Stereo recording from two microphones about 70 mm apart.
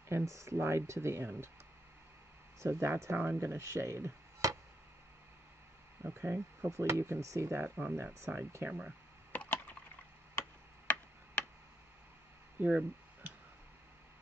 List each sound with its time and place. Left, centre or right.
0.1 s speech: right
2.6 s speech: right
6.0 s speech: right
8.6 s speech: centre
9.3 s wood: left
10.9 s tick: left
12.5 s a sound: right